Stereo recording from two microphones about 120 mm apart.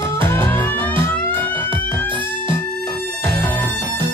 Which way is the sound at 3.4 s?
15° left (ahead or behind).